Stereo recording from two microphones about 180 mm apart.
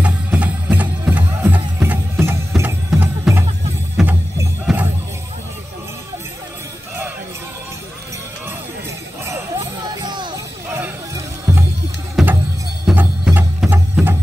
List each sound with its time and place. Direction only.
0.0 s music: 10° right (ahead or behind)
9.9 s music: 25° right (ahead or behind)
12.2 s music: centre (ahead or behind)